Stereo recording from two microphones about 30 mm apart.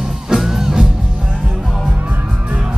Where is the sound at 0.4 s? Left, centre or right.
Centre.